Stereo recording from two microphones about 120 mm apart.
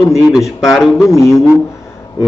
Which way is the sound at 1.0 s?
25° left (ahead or behind).